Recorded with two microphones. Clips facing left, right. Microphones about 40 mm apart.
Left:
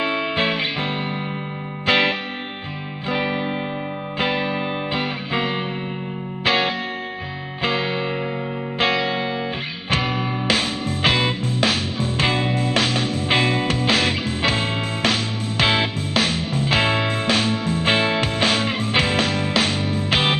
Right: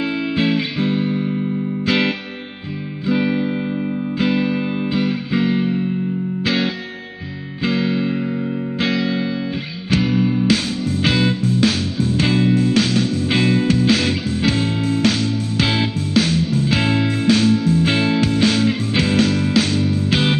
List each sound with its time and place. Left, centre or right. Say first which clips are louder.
0.0 s music: right 1 dB; left